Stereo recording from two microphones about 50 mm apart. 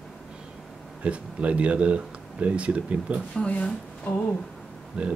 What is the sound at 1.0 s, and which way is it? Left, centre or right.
Speech, right.